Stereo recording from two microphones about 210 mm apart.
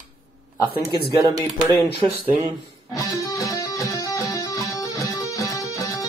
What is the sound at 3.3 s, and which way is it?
Music, 15° left (ahead or behind).